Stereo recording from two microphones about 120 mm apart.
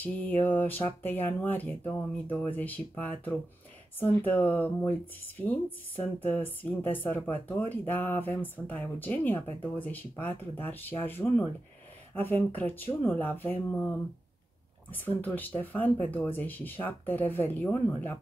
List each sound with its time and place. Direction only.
0.0 s a woman's voice: 15° left (ahead or behind)